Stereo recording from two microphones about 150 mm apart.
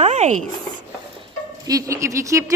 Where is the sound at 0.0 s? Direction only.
50° right (ahead or behind).